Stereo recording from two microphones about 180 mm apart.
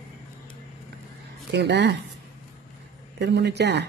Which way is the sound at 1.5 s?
70° right (ahead or behind).